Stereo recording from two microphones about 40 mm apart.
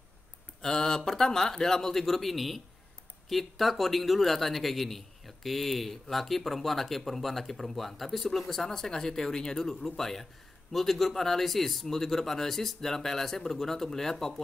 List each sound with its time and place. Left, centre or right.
0.6 s speech: centre